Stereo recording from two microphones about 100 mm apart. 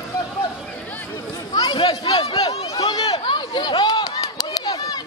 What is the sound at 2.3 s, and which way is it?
Chatter, 45° left (ahead or behind).